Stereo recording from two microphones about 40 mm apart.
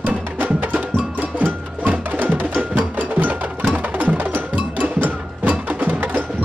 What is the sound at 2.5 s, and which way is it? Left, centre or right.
Music, right.